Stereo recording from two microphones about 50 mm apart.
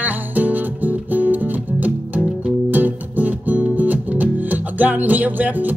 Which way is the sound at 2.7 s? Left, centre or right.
Right.